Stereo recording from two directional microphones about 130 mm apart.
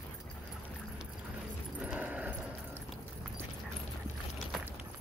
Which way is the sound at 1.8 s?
10° right (ahead or behind).